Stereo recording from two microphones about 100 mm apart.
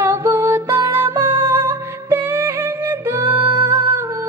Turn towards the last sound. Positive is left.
turn(degrees=-20)  # may be behind; listen again after turning